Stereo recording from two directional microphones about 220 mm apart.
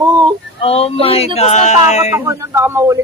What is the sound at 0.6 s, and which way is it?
Speech, 25° left (ahead or behind).